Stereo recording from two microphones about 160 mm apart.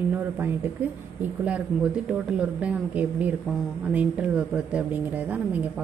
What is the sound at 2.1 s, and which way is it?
A woman's voice, 5° right (ahead or behind).